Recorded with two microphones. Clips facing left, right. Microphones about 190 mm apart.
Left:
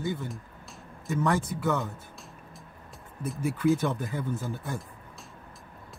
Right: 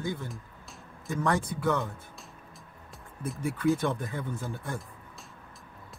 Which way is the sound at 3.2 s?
Centre (ahead or behind).